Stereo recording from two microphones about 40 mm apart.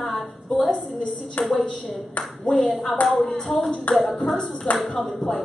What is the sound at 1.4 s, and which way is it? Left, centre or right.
Speech, left.